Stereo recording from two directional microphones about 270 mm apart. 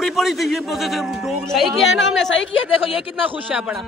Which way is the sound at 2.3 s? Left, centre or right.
Left.